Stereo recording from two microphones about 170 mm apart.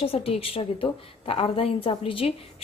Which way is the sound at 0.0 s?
35° left (ahead or behind).